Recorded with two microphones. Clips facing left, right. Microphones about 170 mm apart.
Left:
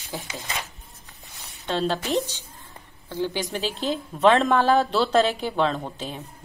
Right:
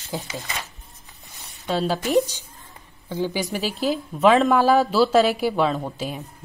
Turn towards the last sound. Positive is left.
turn(degrees=-10)  # may be behind; listen again after turning